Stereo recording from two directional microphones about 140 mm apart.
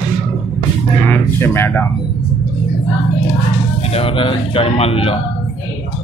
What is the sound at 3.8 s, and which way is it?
Speech, 45° left (ahead or behind).